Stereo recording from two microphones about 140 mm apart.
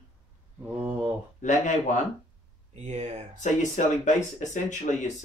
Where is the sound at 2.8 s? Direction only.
55° right (ahead or behind).